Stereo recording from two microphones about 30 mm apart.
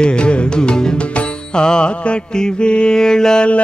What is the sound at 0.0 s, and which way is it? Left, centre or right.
Music, left.